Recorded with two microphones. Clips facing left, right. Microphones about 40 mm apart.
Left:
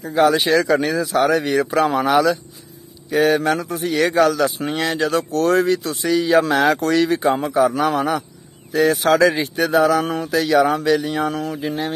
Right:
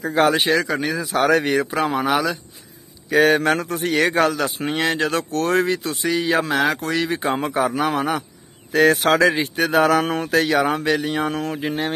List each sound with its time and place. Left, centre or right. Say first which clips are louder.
0.1 s speech: left 2 dB; right
0.7 s speech: left 5 dB; centre
1.1 s a man's voice: even; right
1.6 s speech: left 3 dB; centre
3.1 s a man's voice: right 1 dB; right
6.4 s speech: left 4 dB; centre
7.2 s speech: left 4 dB; right
7.7 s speech: left 2 dB; right
8.7 s a man's voice: right 1 dB; right
9.1 s speech: left 2 dB; right